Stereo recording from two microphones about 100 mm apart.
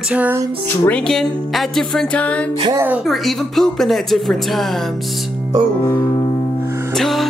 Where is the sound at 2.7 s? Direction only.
20° right (ahead or behind).